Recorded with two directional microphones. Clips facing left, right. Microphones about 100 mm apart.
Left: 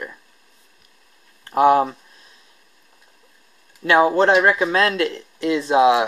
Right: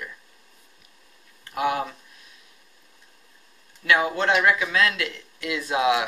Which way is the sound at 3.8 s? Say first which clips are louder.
Left 7 dB; 35° left (ahead or behind).